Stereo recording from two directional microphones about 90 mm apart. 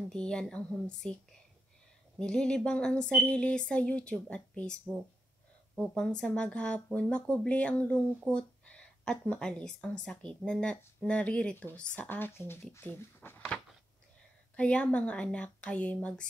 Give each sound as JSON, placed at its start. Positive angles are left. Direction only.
{"t": 0.1, "sound": "speech", "side_deg": 10}
{"t": 5.8, "sound": "speech", "side_deg": 5}
{"t": 14.5, "sound": "speech", "side_deg": 15}